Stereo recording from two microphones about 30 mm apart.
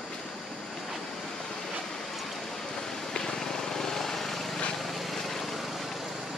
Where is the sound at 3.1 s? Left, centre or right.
Left; by 5.4 s centre.